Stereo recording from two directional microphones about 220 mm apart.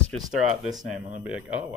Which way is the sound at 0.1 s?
Centre (ahead or behind).